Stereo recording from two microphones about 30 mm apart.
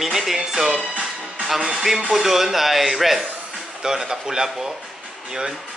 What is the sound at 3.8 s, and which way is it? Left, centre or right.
Speech, centre.